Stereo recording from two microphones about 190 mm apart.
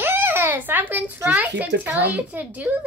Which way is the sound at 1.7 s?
60° right (ahead or behind).